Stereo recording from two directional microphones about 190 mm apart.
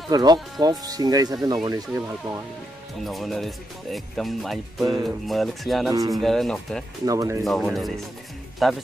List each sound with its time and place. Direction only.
0.1 s speech: 20° right (ahead or behind)
3.0 s speech: centre (ahead or behind)
5.9 s speech: 20° right (ahead or behind)
6.1 s speech: centre (ahead or behind)
7.1 s speech: 15° right (ahead or behind)
7.4 s speech: centre (ahead or behind)